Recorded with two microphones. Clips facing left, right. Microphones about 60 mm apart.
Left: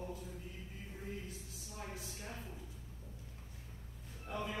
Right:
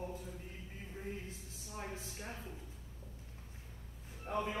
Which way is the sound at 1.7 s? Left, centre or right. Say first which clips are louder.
Right 3 dB; right.